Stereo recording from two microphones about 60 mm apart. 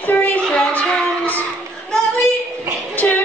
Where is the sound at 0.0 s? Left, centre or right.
Left.